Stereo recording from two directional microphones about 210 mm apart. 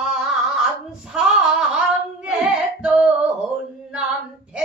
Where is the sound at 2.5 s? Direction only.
5° right (ahead or behind).